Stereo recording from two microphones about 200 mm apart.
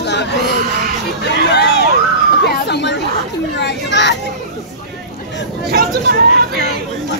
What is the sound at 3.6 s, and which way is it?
Children playing, 60° left (ahead or behind).